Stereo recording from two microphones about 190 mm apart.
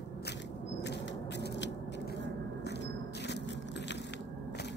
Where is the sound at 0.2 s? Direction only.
65° left (ahead or behind).